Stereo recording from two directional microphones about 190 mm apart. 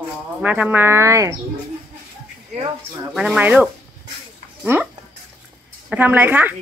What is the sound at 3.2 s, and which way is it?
Speech, 5° right (ahead or behind).